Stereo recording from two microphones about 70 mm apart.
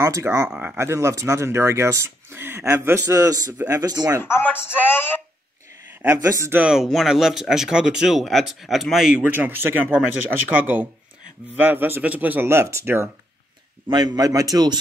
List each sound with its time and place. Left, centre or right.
0.0 s speech: right
3.2 s speech: right
4.2 s a man's voice: left
6.1 s speech: right
6.6 s speech: centre
9.3 s speech: right
12.4 s speech: right
13.9 s a man's voice: right